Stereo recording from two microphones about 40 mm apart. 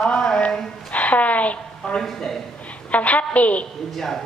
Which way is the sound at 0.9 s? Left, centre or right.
Left.